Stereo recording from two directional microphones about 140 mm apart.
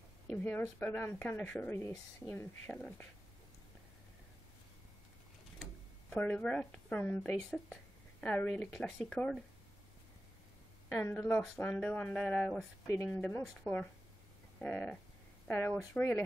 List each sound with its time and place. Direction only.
0.3 s speech: 10° left (ahead or behind)
2.7 s speech: 10° left (ahead or behind)
5.6 s speech: 10° left (ahead or behind)
10.9 s a woman's voice: 20° left (ahead or behind)
11.1 s speech: 10° left (ahead or behind)
12.8 s speech: 20° left (ahead or behind)